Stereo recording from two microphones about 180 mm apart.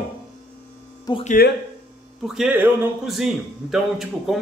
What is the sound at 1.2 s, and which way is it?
Speech, 45° left (ahead or behind).